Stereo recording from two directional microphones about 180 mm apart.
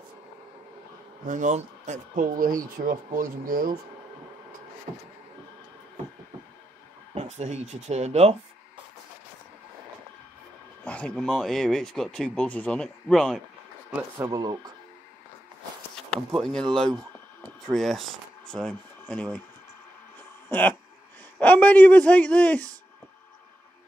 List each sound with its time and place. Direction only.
1.2 s speech: 45° right (ahead or behind)
4.9 s speech: 25° right (ahead or behind)
7.2 s speech: 40° right (ahead or behind)
10.8 s speech: 5° left (ahead or behind)
14.1 s speech: 20° right (ahead or behind)
16.3 s speech: centre (ahead or behind)
20.4 s speech: 10° left (ahead or behind)